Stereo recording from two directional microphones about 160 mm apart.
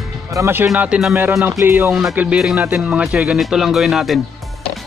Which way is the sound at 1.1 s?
15° right (ahead or behind).